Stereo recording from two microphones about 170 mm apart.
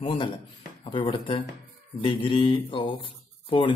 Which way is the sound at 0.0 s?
30° left (ahead or behind).